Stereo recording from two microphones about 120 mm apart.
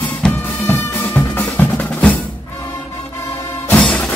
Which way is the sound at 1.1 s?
15° left (ahead or behind).